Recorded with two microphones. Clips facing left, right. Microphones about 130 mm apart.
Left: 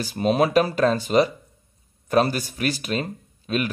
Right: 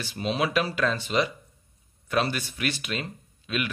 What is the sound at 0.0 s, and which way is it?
Speech, 45° left (ahead or behind).